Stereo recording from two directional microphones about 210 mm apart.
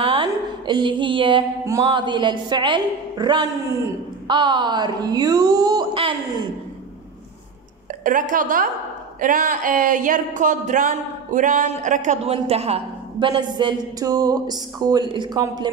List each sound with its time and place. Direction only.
0.0 s music: 20° right (ahead or behind)
4.3 s speech: 20° right (ahead or behind)
8.0 s a woman's voice: 40° right (ahead or behind); by 15.7 s 20° right (ahead or behind)